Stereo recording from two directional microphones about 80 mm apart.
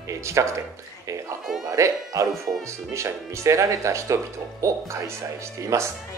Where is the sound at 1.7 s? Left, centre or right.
Right.